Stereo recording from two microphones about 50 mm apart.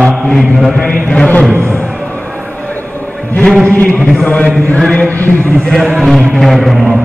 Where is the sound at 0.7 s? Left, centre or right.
Centre.